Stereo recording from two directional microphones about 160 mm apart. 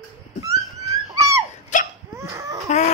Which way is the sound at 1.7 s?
50° left (ahead or behind).